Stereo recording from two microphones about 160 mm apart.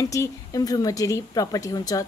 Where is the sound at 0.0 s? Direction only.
20° left (ahead or behind).